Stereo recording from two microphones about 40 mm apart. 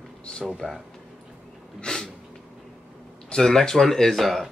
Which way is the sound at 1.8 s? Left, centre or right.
Centre.